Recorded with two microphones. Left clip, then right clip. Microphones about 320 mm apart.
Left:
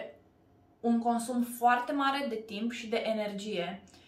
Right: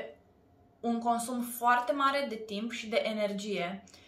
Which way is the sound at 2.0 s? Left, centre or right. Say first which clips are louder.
Right 1 dB; left.